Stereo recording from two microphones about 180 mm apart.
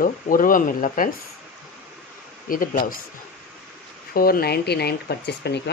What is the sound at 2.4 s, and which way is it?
Speech, 50° left (ahead or behind).